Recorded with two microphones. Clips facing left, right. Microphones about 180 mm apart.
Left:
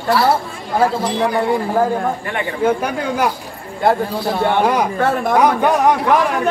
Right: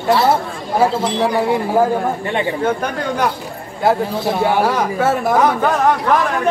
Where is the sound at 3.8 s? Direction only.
5° right (ahead or behind).